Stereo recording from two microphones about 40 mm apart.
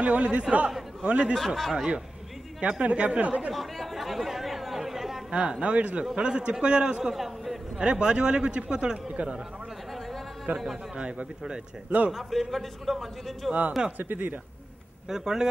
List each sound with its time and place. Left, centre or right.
0.0 s a man's voice: right
1.3 s a man's voice: centre
2.8 s speech: right
3.5 s chatter: centre
5.3 s a man's voice: right
7.1 s a man's voice: centre
7.8 s a man's voice: right
10.4 s a man's voice: centre
11.0 s a man's voice: right
12.1 s a man's voice: centre
13.5 s speech: right
15.0 s speech: centre